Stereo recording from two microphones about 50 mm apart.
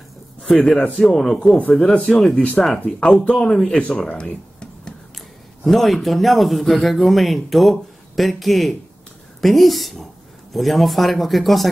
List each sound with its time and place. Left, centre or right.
0.4 s speech: centre
0.9 s speech: centre
5.6 s speech: centre